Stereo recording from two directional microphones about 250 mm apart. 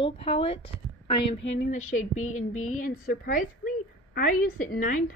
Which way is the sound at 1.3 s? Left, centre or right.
Left.